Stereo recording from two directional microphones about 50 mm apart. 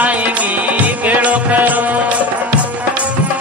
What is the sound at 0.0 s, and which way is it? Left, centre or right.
Music, right.